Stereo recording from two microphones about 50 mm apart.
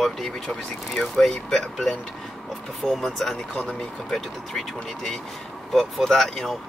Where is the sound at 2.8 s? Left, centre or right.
Centre.